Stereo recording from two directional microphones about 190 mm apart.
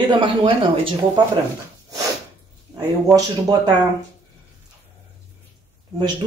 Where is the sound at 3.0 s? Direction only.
20° right (ahead or behind).